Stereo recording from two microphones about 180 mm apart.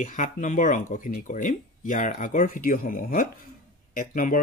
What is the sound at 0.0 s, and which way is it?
Speech, 45° left (ahead or behind).